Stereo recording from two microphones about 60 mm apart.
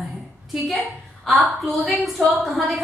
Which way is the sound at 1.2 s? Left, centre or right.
Centre.